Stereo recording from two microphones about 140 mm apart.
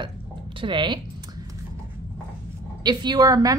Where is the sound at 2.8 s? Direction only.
30° right (ahead or behind).